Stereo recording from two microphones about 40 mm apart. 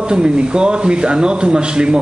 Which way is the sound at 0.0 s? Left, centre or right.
Right.